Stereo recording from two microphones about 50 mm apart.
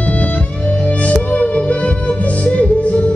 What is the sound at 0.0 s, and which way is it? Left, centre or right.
Music, left.